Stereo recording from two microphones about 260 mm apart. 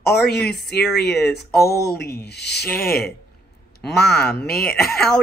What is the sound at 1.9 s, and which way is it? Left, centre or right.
Speech, left.